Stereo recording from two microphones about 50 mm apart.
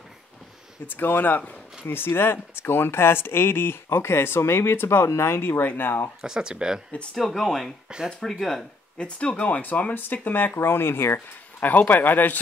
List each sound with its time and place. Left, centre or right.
0.8 s speech: left
6.2 s speech: centre
7.2 s speech: centre
8.9 s speech: left
11.6 s speech: left